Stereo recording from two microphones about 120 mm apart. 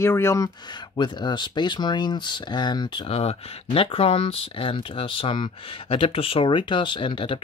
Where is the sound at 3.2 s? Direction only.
60° left (ahead or behind).